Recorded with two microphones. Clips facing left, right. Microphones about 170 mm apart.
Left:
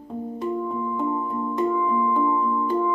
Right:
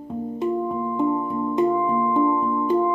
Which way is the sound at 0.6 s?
25° right (ahead or behind).